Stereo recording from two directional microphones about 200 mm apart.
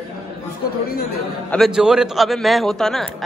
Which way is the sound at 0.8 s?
50° left (ahead or behind).